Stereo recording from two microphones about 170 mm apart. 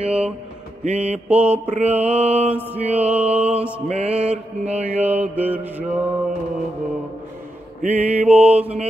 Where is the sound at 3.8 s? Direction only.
40° right (ahead or behind).